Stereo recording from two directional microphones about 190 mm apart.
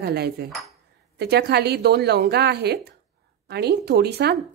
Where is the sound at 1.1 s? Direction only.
60° right (ahead or behind).